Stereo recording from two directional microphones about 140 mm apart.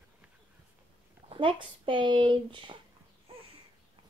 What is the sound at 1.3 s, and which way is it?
A woman's voice, 35° right (ahead or behind).